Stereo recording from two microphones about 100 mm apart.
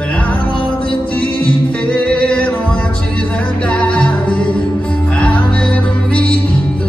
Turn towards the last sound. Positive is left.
turn(degrees=15)  # may be behind; listen again after turning